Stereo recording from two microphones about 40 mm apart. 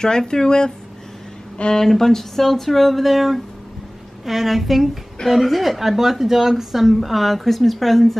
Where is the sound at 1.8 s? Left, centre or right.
Centre.